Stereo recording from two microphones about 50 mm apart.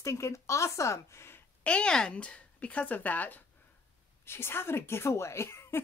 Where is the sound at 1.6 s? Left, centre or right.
Centre; by 3.4 s left.